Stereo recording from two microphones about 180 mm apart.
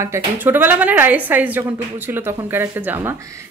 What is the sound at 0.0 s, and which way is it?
A woman's voice, 15° right (ahead or behind).